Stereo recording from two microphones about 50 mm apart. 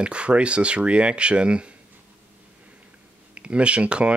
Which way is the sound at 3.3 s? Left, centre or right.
Right.